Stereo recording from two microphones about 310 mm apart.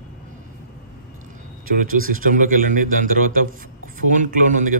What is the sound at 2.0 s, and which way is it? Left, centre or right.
Speech, right.